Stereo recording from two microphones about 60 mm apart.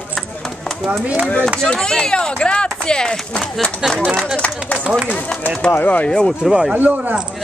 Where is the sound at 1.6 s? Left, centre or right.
Centre.